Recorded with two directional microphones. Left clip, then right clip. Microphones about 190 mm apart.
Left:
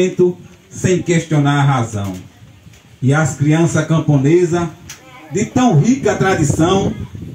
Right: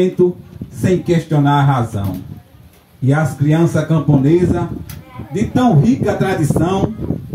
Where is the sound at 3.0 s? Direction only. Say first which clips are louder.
Left 1 dB; 40° right (ahead or behind).